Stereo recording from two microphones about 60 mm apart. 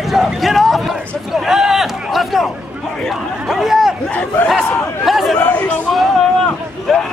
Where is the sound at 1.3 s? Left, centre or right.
Centre.